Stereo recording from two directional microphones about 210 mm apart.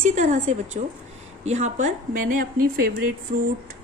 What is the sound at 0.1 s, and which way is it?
A woman's voice, 30° right (ahead or behind).